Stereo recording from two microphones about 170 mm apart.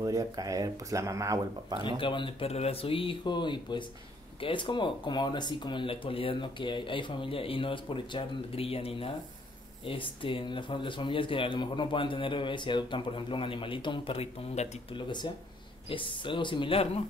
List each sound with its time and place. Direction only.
0.0 s speech: 20° right (ahead or behind)
1.8 s speech: 30° left (ahead or behind)